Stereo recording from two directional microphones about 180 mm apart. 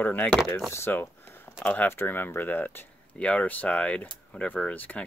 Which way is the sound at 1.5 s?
5° left (ahead or behind).